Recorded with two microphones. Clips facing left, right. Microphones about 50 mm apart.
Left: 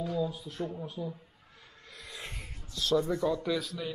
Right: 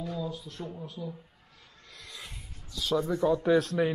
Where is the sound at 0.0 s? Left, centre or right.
Centre.